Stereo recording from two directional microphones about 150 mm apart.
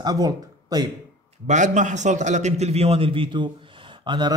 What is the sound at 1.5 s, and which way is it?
A man's voice, 55° right (ahead or behind).